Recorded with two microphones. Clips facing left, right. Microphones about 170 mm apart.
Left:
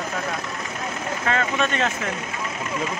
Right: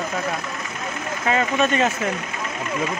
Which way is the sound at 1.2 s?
10° right (ahead or behind).